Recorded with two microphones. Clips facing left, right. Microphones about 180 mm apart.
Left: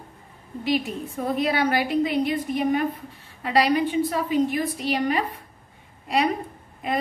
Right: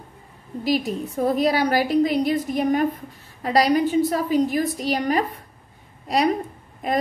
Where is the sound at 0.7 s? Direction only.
40° right (ahead or behind).